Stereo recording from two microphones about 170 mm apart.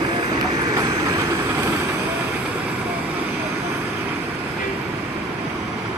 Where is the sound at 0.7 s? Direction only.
20° right (ahead or behind).